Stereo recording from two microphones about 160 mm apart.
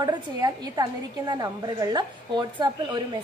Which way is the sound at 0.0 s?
25° right (ahead or behind).